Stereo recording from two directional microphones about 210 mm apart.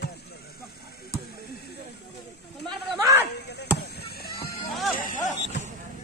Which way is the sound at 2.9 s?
15° right (ahead or behind).